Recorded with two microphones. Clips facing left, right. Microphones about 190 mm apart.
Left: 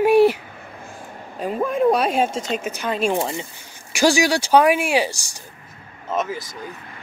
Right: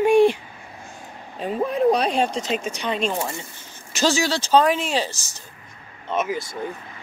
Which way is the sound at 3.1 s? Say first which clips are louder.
Left 4 dB; 20° left (ahead or behind).